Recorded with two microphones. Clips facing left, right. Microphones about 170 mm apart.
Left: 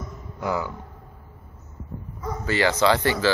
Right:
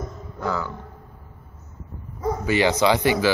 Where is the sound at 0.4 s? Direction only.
15° left (ahead or behind).